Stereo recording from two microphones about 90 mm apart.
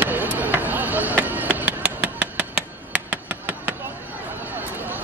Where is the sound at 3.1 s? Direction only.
20° right (ahead or behind).